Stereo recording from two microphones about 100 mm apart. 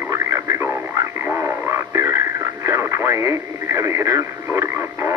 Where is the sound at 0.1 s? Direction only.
30° right (ahead or behind).